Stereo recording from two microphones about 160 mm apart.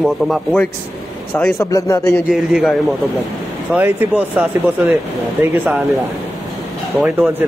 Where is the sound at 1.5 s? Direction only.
20° left (ahead or behind).